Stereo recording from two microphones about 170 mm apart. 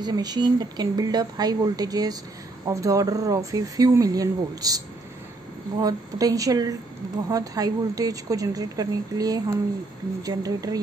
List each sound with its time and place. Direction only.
0.0 s a woman's voice: 25° right (ahead or behind)